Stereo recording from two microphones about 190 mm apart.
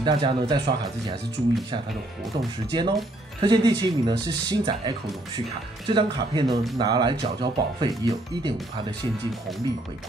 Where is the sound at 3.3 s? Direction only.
25° right (ahead or behind).